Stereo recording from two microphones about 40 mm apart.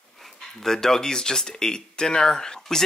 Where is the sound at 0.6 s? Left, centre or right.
Centre.